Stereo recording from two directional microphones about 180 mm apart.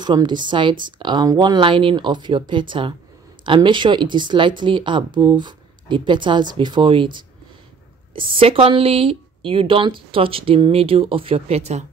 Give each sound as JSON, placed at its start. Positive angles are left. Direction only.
{"t": 0.0, "sound": "speech", "side_deg": -25}